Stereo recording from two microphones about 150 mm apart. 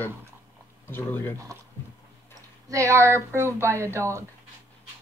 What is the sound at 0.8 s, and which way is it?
Speech, 15° left (ahead or behind).